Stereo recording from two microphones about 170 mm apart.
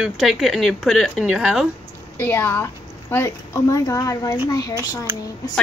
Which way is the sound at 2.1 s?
10° left (ahead or behind).